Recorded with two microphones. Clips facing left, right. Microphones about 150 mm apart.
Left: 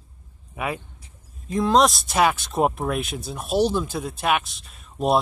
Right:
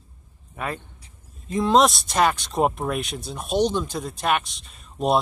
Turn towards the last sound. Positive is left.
turn(degrees=0)  # may be behind; listen again after turning